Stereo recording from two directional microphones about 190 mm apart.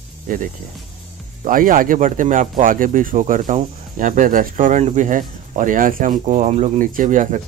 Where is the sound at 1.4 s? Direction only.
45° right (ahead or behind).